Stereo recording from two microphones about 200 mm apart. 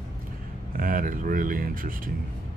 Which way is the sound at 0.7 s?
45° right (ahead or behind).